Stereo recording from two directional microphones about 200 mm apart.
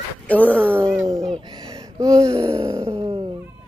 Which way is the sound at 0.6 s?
10° right (ahead or behind).